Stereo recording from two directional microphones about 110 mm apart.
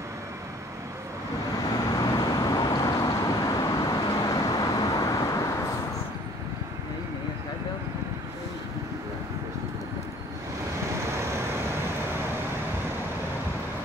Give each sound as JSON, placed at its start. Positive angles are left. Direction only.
{"t": 1.9, "sound": "vehicle", "side_deg": 30}